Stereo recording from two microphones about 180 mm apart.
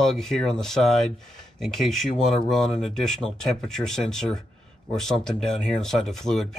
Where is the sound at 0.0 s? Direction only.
Centre (ahead or behind).